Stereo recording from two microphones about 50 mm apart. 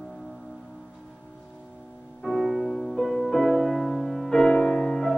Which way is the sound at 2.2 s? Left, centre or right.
Centre.